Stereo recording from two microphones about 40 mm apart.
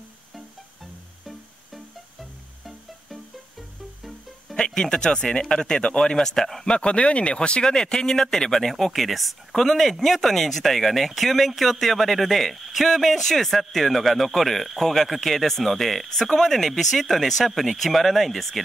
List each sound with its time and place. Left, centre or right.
1.2 s music: centre
4.6 s speech: centre
6.1 s speech: centre
6.6 s speech: left; by 18.6 s centre